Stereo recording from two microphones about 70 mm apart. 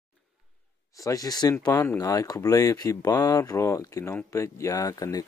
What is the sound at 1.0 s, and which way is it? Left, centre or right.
Speech, left.